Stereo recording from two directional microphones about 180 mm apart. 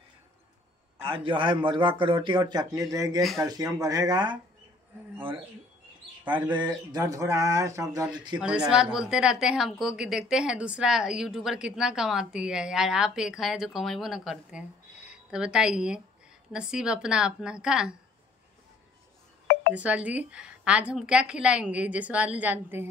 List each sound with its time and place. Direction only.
1.0 s speech: 30° right (ahead or behind)
6.6 s speech: 20° right (ahead or behind)
8.4 s a woman's voice: 5° right (ahead or behind)
19.7 s a woman's voice: 5° right (ahead or behind)